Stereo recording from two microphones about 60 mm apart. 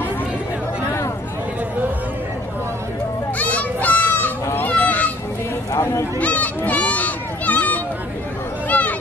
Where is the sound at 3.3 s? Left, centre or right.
Left.